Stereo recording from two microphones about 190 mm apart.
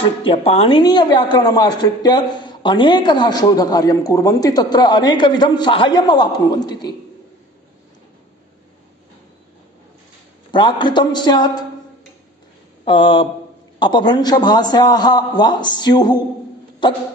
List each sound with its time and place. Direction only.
0.0 s a woman's voice: 30° left (ahead or behind)
10.5 s a woman's voice: 25° left (ahead or behind)
12.8 s a woman's voice: 25° left (ahead or behind)